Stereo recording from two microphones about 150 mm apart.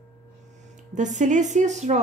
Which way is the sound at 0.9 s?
55° right (ahead or behind).